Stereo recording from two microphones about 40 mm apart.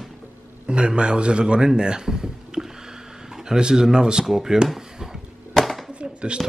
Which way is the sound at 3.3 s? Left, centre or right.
Centre.